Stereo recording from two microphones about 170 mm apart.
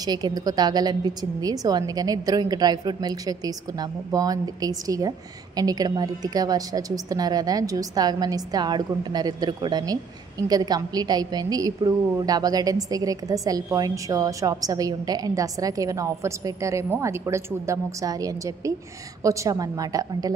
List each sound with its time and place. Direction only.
0.0 s a woman's voice: 25° right (ahead or behind)